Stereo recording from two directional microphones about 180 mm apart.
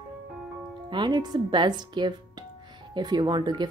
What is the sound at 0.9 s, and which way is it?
A woman's voice, 25° right (ahead or behind).